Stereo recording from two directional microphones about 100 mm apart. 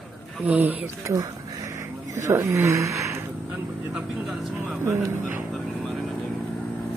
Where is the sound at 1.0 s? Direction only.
30° right (ahead or behind).